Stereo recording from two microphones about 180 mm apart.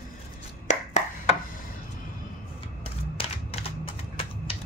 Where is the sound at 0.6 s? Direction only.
40° left (ahead or behind).